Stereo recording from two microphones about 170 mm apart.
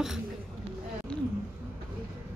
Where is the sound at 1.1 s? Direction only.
5° left (ahead or behind).